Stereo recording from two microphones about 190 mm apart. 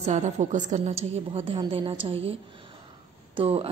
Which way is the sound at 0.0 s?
40° right (ahead or behind).